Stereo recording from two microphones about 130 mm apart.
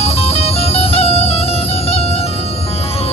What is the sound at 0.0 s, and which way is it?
Music, 50° left (ahead or behind).